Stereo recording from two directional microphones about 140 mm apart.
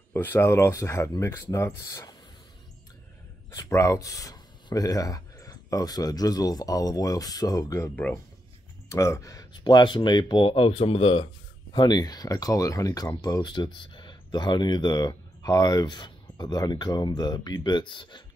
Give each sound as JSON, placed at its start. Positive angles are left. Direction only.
{"t": 0.1, "sound": "speech", "side_deg": 15}
{"t": 3.5, "sound": "speech", "side_deg": 20}
{"t": 11.7, "sound": "speech", "side_deg": 30}